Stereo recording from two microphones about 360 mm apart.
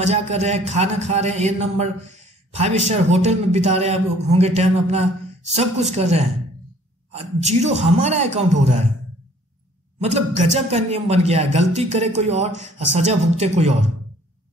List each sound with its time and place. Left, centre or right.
0.0 s a man's voice: centre
9.9 s speech: centre